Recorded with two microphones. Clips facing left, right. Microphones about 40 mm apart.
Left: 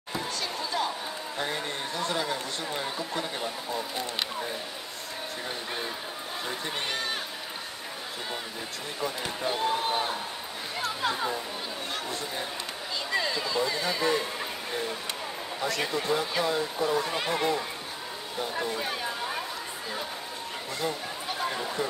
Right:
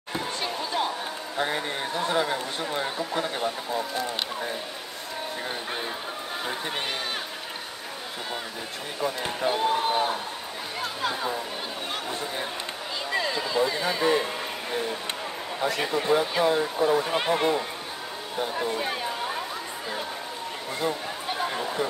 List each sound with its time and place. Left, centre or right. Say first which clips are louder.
0.1 s basketball bounce: right 3 dB; right
1.4 s a man's voice: right 5 dB; centre
6.4 s a man's voice: right 2 dB; right
9.0 s speech: right 4 dB; centre
13.1 s speech: right 2 dB; centre
15.6 s a man's voice: right 3 dB; centre
18.8 s chatter: right 3 dB; centre
20.8 s speech: right 4 dB; centre